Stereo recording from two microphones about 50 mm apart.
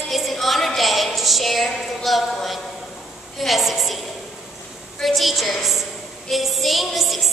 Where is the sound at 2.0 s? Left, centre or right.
Centre.